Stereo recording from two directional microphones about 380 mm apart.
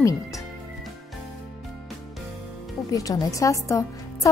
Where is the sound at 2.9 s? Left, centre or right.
Centre.